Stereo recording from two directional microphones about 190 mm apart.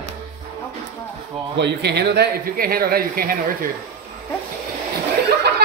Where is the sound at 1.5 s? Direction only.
65° right (ahead or behind).